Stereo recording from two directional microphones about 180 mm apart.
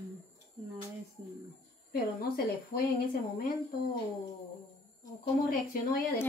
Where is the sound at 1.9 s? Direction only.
60° left (ahead or behind).